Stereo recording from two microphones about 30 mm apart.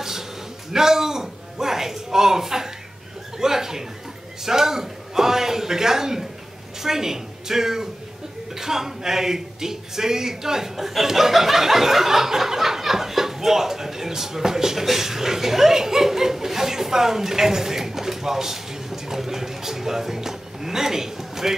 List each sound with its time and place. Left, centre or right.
0.7 s a man's voice: centre